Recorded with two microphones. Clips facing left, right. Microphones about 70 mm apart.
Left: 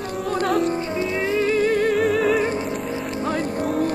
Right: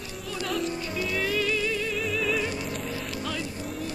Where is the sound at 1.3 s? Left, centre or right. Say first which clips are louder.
Left 12 dB; left.